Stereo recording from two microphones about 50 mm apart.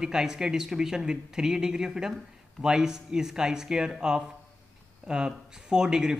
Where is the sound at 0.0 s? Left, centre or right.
Centre.